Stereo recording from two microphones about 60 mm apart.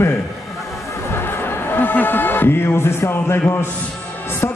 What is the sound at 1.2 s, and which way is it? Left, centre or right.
A man's voice, left.